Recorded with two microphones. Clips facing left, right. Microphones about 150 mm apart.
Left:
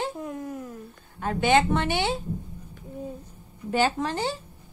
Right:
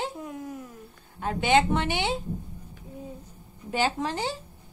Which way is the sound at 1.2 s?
15° right (ahead or behind).